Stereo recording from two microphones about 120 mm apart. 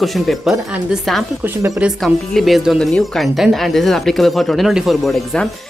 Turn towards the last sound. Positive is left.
turn(degrees=0)  # may be behind; listen again after turning